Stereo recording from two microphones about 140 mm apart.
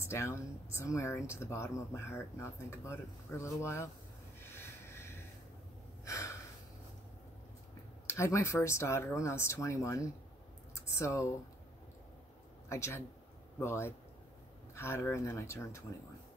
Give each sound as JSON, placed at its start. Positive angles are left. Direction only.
{"t": 0.0, "sound": "speech", "side_deg": 20}
{"t": 4.5, "sound": "a sound", "side_deg": 15}
{"t": 6.0, "sound": "gasp", "side_deg": 20}
{"t": 8.1, "sound": "speech", "side_deg": 20}
{"t": 12.6, "sound": "a man's voice", "side_deg": 20}